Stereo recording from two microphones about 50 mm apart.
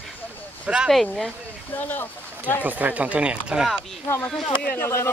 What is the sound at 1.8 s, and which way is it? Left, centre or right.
Speech, left.